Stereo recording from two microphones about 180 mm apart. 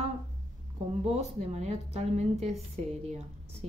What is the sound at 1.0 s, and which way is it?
A woman's voice, 35° right (ahead or behind).